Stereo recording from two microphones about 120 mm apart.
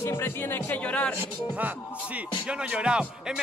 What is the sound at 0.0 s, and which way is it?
Speech, 20° left (ahead or behind).